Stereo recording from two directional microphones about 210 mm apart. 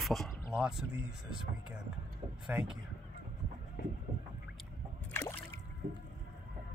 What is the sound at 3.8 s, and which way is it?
Train, 50° left (ahead or behind).